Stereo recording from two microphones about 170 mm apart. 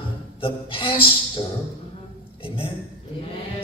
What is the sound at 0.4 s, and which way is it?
A man's voice, 30° left (ahead or behind).